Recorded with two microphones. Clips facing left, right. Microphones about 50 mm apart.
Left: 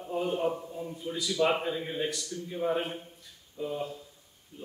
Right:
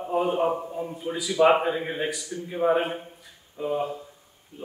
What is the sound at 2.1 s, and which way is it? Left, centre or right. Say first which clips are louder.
Speech: right 4 dB; centre.